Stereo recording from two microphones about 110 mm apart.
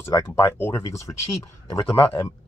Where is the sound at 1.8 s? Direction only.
45° left (ahead or behind).